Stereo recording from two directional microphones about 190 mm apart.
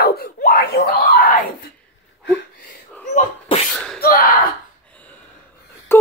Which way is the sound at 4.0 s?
50° left (ahead or behind).